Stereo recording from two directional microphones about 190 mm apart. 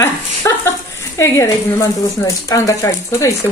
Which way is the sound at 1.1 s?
15° left (ahead or behind).